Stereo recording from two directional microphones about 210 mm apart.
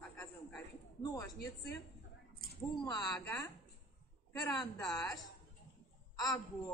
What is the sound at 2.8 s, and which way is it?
Speech, 20° left (ahead or behind).